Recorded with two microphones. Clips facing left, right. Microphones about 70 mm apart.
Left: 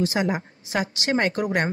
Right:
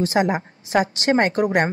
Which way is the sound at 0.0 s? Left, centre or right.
Right.